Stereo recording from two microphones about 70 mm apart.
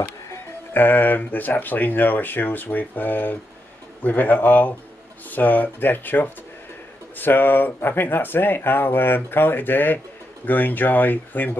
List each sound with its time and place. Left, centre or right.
0.7 s speech: left